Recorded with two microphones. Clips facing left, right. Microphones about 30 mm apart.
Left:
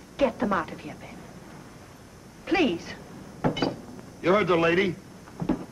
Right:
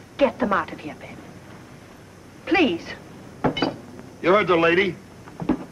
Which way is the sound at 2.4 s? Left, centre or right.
Centre.